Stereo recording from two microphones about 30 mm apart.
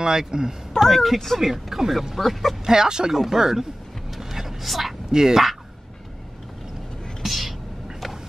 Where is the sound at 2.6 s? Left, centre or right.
Centre.